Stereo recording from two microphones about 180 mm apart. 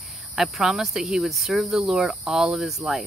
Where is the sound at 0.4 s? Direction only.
5° right (ahead or behind).